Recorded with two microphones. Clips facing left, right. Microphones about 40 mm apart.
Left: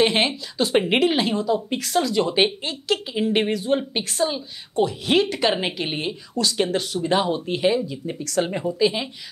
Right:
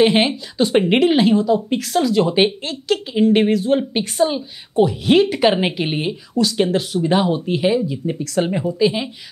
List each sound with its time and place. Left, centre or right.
0.0 s speech: centre